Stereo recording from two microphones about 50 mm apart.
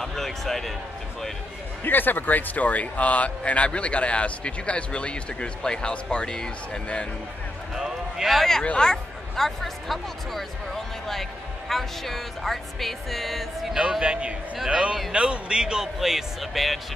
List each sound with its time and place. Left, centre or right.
0.0 s speech: centre
1.9 s a man's voice: left; by 7.1 s centre
7.7 s a sound: centre
8.4 s speech: centre
14.0 s a man's voice: right
16.0 s speech: centre